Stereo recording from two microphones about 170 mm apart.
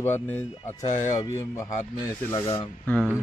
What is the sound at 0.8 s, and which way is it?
Speech, 45° left (ahead or behind).